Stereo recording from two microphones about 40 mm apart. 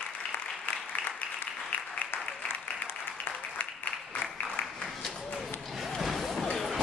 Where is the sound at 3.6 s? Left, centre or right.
Left.